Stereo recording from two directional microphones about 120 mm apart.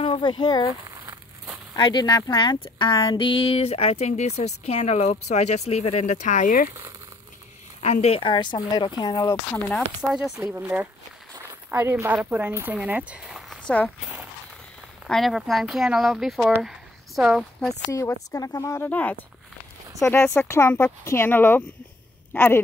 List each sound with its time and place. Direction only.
0.0 s speech: 45° left (ahead or behind)
1.8 s speech: 35° left (ahead or behind); by 6.6 s 90° left
7.8 s speech: 60° left (ahead or behind); by 9.6 s 25° left (ahead or behind)
10.1 s speech: 5° right (ahead or behind)
13.7 s speech: 15° left (ahead or behind)
15.0 s speech: centre (ahead or behind)
17.9 s speech: 25° left (ahead or behind)
18.9 s speech: 15° left (ahead or behind)
20.0 s speech: 25° left (ahead or behind)